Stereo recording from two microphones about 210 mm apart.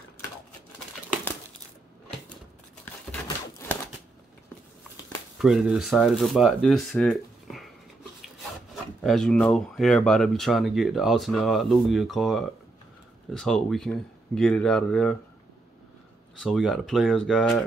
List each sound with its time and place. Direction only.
3.3 s a sound: 15° left (ahead or behind)
5.4 s speech: centre (ahead or behind)
9.0 s speech: centre (ahead or behind)
16.3 s speech: centre (ahead or behind)